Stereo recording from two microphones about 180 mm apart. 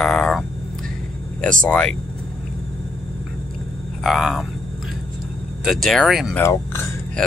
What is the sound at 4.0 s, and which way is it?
Speech, centre (ahead or behind).